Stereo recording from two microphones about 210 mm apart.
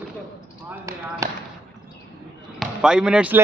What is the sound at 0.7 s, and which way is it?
Speech, 15° right (ahead or behind).